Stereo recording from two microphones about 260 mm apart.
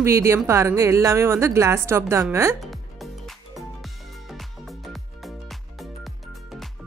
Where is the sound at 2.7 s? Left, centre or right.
Centre.